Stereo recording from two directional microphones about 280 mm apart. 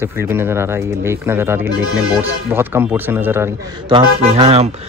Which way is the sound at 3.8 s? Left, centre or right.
Centre.